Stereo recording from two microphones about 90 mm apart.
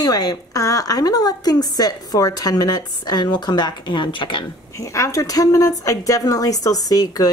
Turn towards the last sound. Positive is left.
turn(degrees=45)  # may be behind; listen again after turning